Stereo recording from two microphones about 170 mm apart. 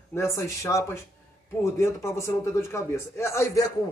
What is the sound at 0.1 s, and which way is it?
Speech, 15° left (ahead or behind).